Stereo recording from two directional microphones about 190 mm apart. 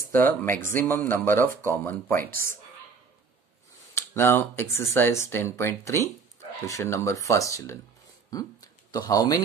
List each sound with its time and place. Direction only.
0.1 s speech: 10° left (ahead or behind)
3.9 s speech: 15° left (ahead or behind)